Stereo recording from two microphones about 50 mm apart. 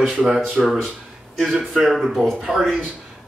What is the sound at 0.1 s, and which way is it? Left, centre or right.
Speech, centre.